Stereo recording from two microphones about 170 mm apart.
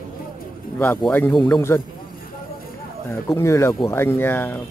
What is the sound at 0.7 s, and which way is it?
Speech, 10° left (ahead or behind).